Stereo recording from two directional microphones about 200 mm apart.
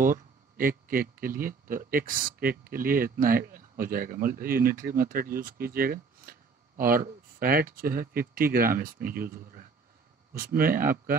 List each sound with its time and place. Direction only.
0.0 s speech: 45° right (ahead or behind)